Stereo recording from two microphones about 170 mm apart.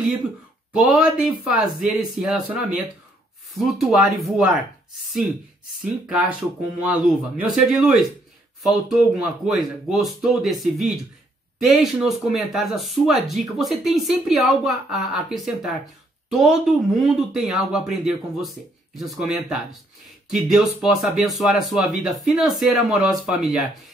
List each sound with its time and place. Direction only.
0.8 s speech: 5° right (ahead or behind)
3.5 s speech: centre (ahead or behind)
6.0 s speech: 5° right (ahead or behind)